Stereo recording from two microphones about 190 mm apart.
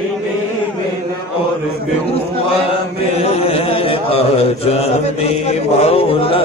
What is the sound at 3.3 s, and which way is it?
Mantra, 30° left (ahead or behind).